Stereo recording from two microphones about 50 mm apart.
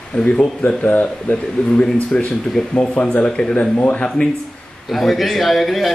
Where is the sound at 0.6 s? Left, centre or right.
Left.